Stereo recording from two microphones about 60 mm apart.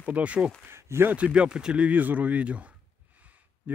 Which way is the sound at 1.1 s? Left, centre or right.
Centre.